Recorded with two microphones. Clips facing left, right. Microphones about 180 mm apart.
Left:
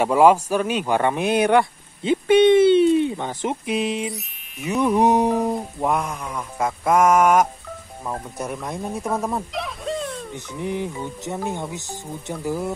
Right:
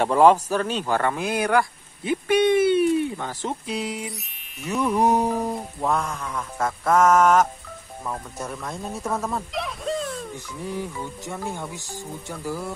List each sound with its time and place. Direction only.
0.0 s speech: 10° left (ahead or behind)
4.7 s mantra: 10° left (ahead or behind)
9.5 s a sound: centre (ahead or behind)
10.3 s speech: 20° left (ahead or behind)